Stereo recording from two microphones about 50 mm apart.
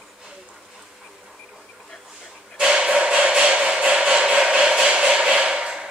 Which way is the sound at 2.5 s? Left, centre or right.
Centre.